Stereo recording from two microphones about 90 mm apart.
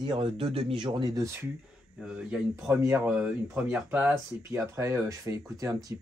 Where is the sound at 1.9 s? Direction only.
10° right (ahead or behind).